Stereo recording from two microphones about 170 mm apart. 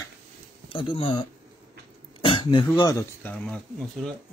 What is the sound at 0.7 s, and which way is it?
Speech, 30° left (ahead or behind).